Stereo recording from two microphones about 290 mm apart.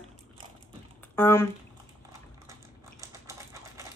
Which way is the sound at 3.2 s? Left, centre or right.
Centre.